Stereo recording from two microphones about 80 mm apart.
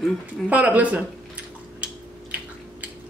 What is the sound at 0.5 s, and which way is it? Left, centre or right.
Speech, centre.